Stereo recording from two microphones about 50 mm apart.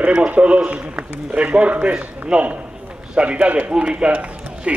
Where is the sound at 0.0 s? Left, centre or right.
Centre.